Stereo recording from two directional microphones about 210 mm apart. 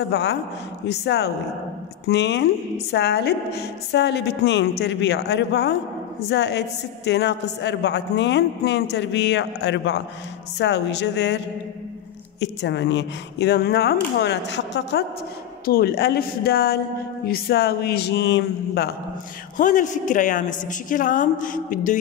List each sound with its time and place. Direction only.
0.1 s a woman's voice: 55° left (ahead or behind)
12.4 s a man's voice: 60° left (ahead or behind)
19.5 s a woman's voice: 35° left (ahead or behind)